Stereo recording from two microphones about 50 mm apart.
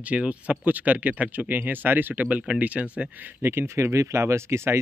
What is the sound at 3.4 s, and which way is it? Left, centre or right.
Speech, right.